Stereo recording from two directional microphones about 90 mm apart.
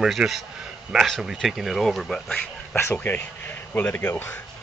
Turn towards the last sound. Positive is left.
turn(degrees=25)  # may be behind; listen again after turning